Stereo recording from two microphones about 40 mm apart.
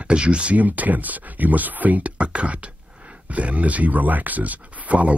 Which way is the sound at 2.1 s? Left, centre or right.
Right.